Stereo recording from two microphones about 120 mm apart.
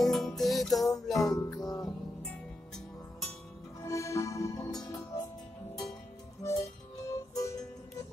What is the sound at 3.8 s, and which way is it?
Music, 25° left (ahead or behind).